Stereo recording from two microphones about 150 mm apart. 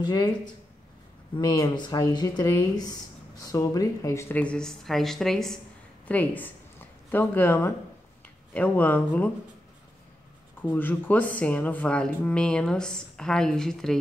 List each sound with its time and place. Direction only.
0.0 s speech: 25° left (ahead or behind)
1.4 s speech: 30° left (ahead or behind); by 9.3 s 10° left (ahead or behind)
10.6 s speech: 10° left (ahead or behind)